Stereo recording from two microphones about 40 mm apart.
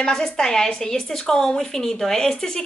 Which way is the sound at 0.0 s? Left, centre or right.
Centre.